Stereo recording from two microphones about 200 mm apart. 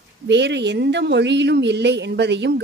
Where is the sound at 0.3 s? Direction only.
60° right (ahead or behind).